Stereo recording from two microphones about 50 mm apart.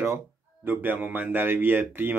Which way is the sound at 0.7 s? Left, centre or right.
Right.